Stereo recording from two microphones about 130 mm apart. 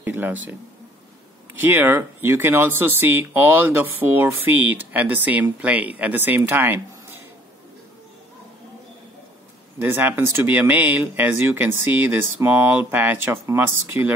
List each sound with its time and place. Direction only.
0.0 s speech: 15° right (ahead or behind)
9.8 s speech: 15° right (ahead or behind)